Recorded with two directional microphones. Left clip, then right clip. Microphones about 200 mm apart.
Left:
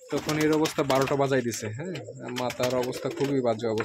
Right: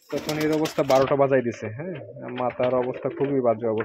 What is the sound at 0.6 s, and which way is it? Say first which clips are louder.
Speech: right 4 dB; centre (ahead or behind).